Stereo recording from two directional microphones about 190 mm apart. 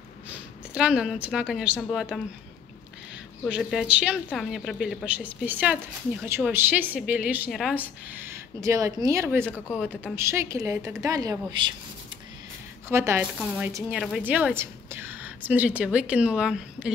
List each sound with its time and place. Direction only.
0.7 s a woman's voice: 5° right (ahead or behind)
3.4 s a woman's voice: 5° right (ahead or behind); by 11.7 s 20° right (ahead or behind)
12.8 s a woman's voice: 15° right (ahead or behind)